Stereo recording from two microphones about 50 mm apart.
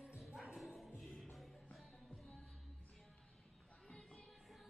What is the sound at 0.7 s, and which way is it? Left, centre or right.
Music, centre.